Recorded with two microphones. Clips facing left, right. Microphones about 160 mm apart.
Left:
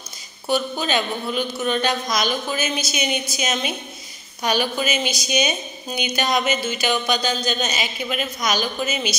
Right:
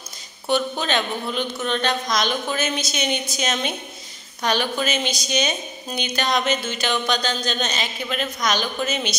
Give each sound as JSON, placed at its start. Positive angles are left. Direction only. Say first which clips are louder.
{"t": 0.5, "sound": "a woman's voice", "louder": "even", "side_deg": 5}